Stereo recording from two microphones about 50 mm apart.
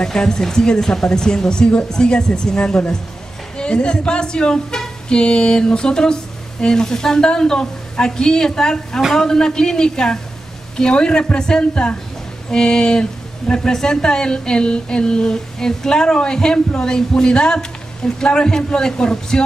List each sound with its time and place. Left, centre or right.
0.0 s a woman's voice: centre